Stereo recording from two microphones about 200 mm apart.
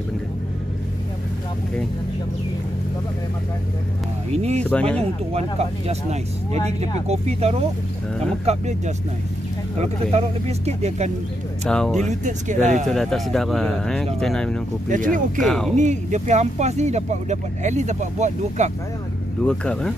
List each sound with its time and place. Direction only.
4.3 s speech: 35° right (ahead or behind)
4.6 s speech: 5° left (ahead or behind)
5.0 s speech: 30° right (ahead or behind)
7.1 s speech: 30° right (ahead or behind)
11.7 s speech: 5° left (ahead or behind)
12.0 s speech: 35° right (ahead or behind)
12.9 s speech: centre (ahead or behind)
14.9 s speech: 40° right (ahead or behind)
15.4 s speech: 5° left (ahead or behind)
15.7 s speech: 35° right (ahead or behind)
19.4 s speech: 5° left (ahead or behind)